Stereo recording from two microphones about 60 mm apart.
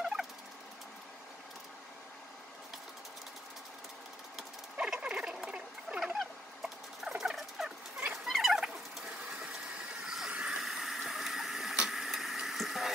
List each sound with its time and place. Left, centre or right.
0.0 s fowl: centre
5.0 s rodents: centre
5.9 s rodents: centre
7.1 s turkey: centre
8.3 s fowl: centre
8.6 s ratchet: centre
10.0 s vehicle: centre